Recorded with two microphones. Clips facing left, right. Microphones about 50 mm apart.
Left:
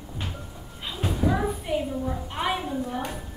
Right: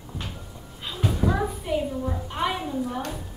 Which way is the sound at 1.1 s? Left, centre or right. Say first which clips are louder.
Left 2 dB; centre.